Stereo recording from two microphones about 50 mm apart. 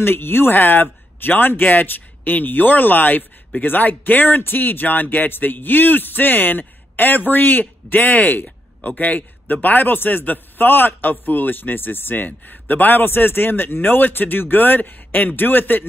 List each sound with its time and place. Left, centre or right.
0.0 s speech: left